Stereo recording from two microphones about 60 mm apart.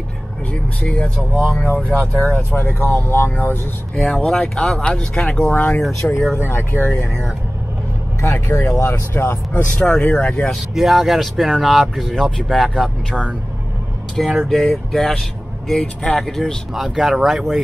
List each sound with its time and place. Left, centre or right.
0.8 s speech: centre
2.3 s speech: left
3.9 s speech: centre
5.5 s speech: left
6.0 s speech: centre
6.5 s speech: left
8.2 s speech: left
8.9 s speech: left
9.5 s speech: left
10.5 s speech: centre